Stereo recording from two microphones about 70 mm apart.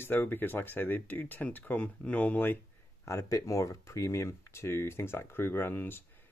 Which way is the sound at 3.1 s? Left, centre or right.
Left.